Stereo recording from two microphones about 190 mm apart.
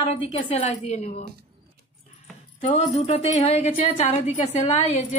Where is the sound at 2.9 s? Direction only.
35° left (ahead or behind).